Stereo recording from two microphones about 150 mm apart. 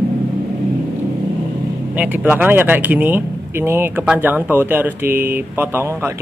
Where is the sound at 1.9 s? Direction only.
10° right (ahead or behind).